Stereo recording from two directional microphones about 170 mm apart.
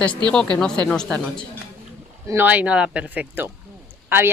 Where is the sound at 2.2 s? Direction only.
10° right (ahead or behind).